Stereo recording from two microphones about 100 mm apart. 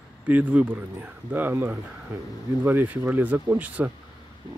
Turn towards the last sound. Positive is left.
turn(degrees=-15)  # may be behind; listen again after turning